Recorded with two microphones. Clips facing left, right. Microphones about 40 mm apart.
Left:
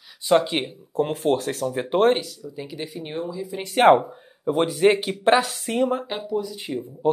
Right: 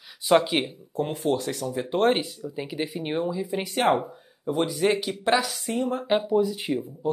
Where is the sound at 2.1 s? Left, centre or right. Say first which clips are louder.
Right 1 dB; right.